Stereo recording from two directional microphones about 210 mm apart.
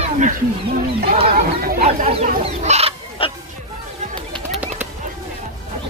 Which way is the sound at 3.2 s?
25° left (ahead or behind).